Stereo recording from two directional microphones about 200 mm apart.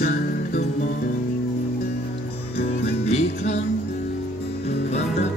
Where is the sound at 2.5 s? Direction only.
55° left (ahead or behind).